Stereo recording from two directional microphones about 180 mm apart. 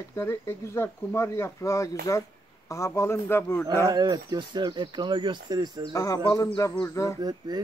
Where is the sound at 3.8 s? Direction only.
20° right (ahead or behind).